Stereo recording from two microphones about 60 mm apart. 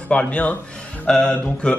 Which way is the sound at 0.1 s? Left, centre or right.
Centre.